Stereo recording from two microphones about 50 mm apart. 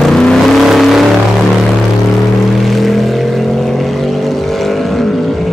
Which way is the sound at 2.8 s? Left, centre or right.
Centre.